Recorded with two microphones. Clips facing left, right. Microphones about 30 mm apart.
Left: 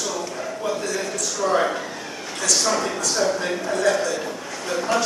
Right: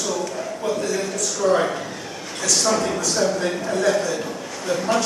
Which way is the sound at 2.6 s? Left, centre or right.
Centre.